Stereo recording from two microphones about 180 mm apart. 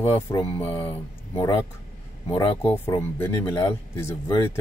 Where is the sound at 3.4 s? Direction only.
25° left (ahead or behind).